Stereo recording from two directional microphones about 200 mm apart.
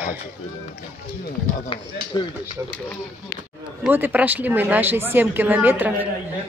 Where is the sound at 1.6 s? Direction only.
25° left (ahead or behind).